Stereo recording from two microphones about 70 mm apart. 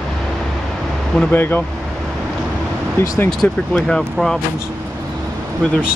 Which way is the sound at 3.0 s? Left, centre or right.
Left.